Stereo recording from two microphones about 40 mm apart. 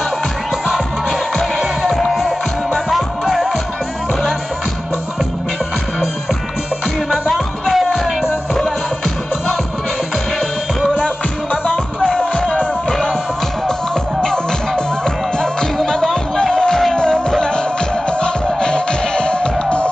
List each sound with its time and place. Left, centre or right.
1.8 s music: centre
2.0 s music: centre
7.2 s music: centre
12.0 s music: right
15.3 s music: centre